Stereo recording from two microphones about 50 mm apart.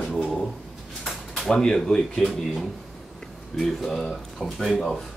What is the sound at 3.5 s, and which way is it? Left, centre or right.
Speech, centre.